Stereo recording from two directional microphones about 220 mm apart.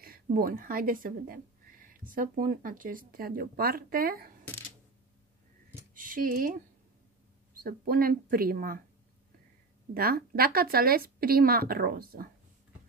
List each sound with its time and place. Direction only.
0.0 s speech: 40° right (ahead or behind)
5.9 s speech: 40° right (ahead or behind)
7.6 s speech: 40° right (ahead or behind)
9.9 s a woman's voice: 40° right (ahead or behind)